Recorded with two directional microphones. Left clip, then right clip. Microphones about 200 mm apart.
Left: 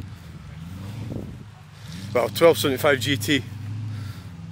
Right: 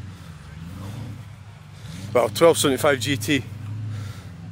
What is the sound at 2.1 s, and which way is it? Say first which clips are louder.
Speech: right 1 dB; 15° right (ahead or behind).